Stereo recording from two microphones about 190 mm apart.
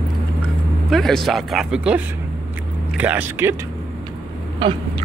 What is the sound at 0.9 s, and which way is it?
Speech, centre (ahead or behind).